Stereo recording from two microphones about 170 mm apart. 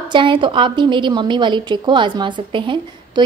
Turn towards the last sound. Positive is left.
turn(degrees=-30)  # may be behind; listen again after turning